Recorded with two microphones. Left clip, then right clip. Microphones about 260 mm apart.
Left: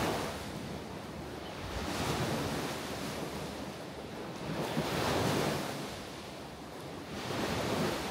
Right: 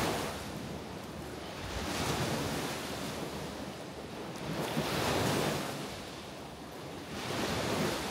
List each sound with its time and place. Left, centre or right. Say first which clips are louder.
0.0 s a sound: even; right
4.6 s waves: even; right
7.4 s waves: even; right